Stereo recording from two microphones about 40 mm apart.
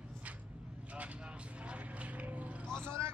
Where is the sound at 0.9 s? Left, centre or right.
Right.